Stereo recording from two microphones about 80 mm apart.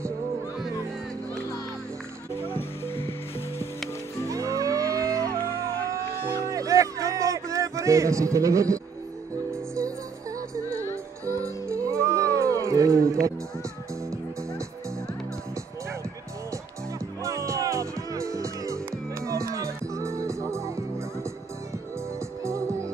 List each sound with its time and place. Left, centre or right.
2.9 s music: left
4.3 s music: right
5.9 s a sound: right
10.5 s music: right
17.2 s music: right
22.4 s music: right